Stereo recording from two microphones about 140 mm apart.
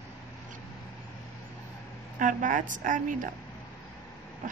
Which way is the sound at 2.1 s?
70° right (ahead or behind).